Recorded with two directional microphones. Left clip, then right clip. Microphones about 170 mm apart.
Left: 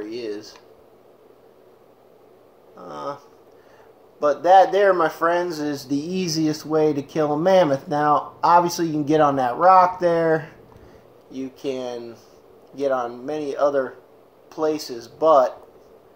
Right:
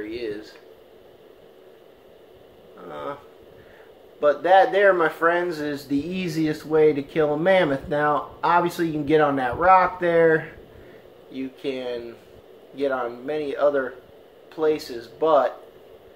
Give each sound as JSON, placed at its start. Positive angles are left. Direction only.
{"t": 2.9, "sound": "a sound", "side_deg": 35}
{"t": 4.2, "sound": "speech", "side_deg": 35}
{"t": 11.6, "sound": "speech", "side_deg": 35}